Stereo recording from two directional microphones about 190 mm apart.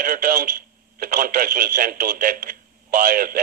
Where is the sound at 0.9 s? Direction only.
50° right (ahead or behind).